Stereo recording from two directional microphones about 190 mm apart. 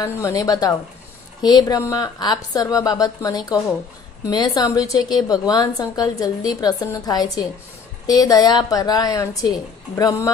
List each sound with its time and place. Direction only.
0.0 s a woman's voice: 15° left (ahead or behind)